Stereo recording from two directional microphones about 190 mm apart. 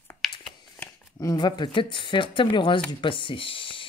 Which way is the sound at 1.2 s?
20° left (ahead or behind).